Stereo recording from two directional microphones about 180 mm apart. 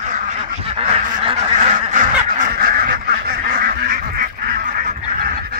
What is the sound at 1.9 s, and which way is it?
Duck, 45° right (ahead or behind).